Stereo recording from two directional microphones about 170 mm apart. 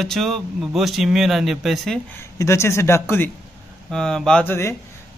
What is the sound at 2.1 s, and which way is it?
Speech, 15° left (ahead or behind).